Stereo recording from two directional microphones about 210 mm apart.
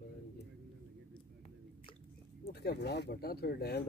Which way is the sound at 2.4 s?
50° left (ahead or behind).